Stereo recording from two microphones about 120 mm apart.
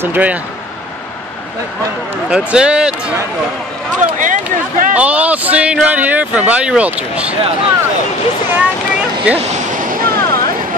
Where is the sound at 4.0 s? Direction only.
90° right.